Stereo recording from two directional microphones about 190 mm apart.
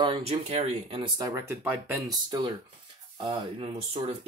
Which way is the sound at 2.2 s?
20° right (ahead or behind).